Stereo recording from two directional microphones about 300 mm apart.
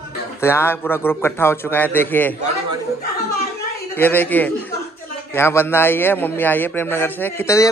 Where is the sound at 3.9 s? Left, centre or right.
Centre.